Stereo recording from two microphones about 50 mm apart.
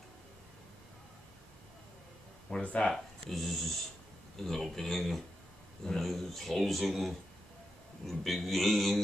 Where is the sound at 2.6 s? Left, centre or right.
Left.